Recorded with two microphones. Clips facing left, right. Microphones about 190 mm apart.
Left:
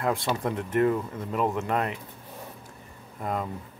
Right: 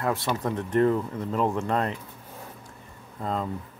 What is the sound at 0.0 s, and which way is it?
Speech, 15° left (ahead or behind).